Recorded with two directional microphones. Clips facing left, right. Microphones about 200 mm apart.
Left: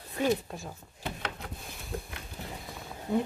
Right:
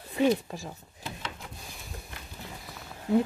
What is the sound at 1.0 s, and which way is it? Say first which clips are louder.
Wood: left 2 dB; 60° left (ahead or behind).